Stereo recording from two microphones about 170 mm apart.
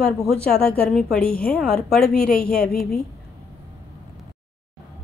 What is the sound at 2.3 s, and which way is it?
Speech, 60° left (ahead or behind).